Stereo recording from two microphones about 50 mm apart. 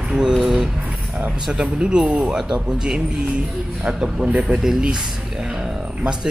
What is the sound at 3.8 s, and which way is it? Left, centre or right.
Speech, right.